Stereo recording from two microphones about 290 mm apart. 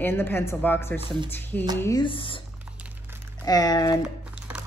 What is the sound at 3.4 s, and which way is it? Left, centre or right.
Speech, centre.